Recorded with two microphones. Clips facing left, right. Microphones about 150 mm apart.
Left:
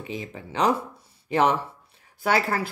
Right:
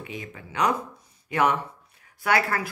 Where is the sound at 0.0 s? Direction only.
25° left (ahead or behind).